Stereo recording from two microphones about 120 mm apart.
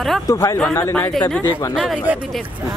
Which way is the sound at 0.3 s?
25° left (ahead or behind).